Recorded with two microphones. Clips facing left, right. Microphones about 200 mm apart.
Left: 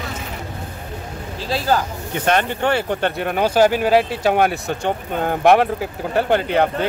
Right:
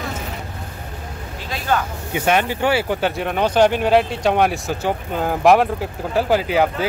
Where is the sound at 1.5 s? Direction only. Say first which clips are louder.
Left 2 dB; 35° left (ahead or behind).